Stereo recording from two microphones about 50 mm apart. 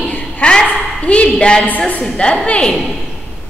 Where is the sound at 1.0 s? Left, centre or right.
Left.